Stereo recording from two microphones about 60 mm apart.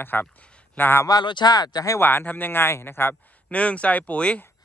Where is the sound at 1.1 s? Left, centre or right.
Left.